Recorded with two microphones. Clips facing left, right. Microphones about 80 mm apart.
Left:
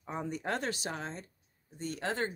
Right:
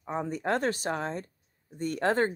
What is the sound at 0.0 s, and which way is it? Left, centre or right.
Speech, right.